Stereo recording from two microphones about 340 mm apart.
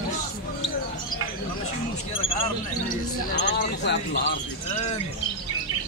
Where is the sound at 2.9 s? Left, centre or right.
Left.